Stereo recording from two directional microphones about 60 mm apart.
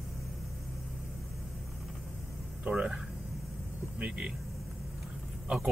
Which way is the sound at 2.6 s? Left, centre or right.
Centre.